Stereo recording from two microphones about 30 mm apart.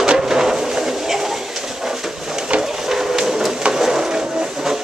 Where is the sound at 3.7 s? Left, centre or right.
Centre.